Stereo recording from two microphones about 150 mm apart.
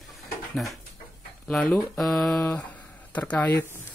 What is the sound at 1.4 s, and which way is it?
Speech, 5° left (ahead or behind).